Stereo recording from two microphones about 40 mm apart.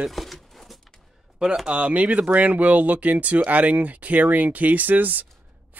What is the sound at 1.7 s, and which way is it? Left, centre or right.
Speech, right.